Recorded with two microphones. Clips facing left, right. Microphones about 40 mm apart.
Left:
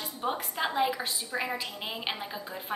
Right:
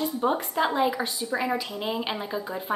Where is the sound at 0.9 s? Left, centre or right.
Centre.